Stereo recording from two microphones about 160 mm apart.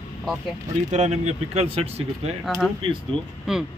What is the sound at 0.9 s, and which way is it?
Speech, 45° right (ahead or behind).